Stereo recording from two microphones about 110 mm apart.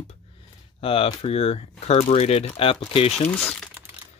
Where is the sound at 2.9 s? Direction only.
65° left (ahead or behind).